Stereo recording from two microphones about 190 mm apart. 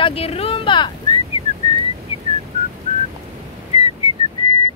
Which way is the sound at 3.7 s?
35° left (ahead or behind).